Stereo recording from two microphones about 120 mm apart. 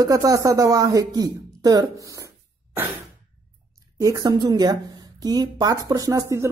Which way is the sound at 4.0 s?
30° right (ahead or behind).